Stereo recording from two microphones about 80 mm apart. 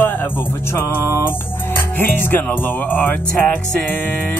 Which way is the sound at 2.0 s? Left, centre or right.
Left.